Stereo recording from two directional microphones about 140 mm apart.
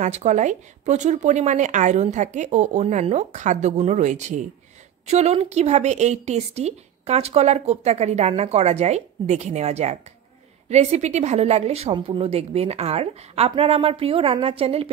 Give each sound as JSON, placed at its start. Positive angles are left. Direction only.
{"t": 0.0, "sound": "a woman's voice", "side_deg": -55}